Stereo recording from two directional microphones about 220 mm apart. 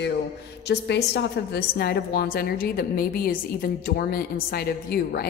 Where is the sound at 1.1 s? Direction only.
45° left (ahead or behind).